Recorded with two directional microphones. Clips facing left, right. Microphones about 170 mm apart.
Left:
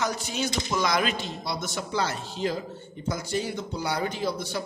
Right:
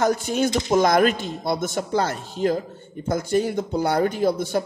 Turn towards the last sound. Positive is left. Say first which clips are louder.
# right 8 dB
turn(degrees=-50)  # may be behind; listen again after turning